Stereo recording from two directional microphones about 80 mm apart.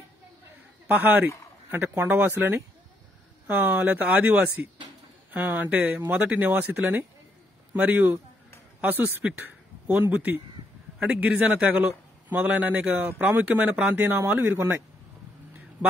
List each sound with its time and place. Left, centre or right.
0.8 s a man's voice: right